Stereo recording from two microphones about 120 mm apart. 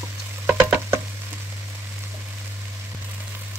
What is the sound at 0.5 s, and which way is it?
Frying, 15° right (ahead or behind).